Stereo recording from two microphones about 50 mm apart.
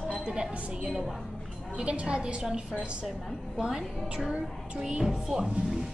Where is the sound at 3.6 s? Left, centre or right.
Centre.